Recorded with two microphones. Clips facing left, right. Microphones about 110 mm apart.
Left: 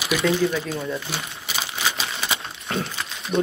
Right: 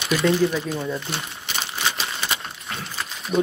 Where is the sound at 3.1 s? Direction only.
Centre (ahead or behind).